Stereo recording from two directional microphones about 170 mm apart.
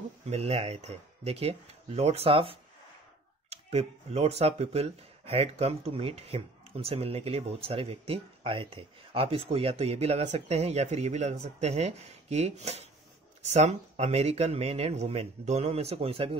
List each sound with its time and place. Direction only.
0.3 s speech: 40° right (ahead or behind)